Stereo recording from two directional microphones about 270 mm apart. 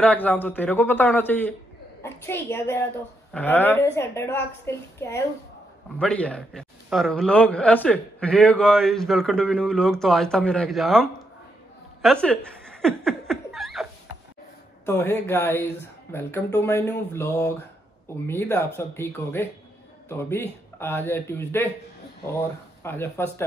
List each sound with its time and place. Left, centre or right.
0.0 s a man's voice: centre
12.0 s laughter: centre
14.9 s speech: centre